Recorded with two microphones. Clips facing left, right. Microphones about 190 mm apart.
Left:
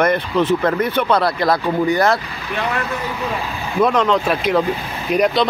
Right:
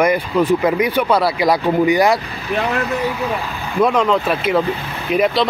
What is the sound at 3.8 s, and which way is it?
Speech, 5° right (ahead or behind).